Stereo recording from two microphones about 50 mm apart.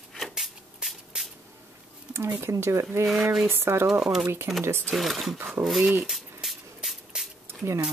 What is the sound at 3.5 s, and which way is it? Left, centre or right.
Speech, right.